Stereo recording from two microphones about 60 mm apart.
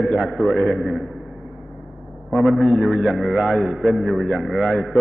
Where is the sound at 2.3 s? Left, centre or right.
Centre.